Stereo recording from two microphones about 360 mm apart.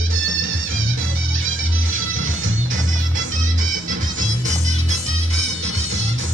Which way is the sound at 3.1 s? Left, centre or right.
Right.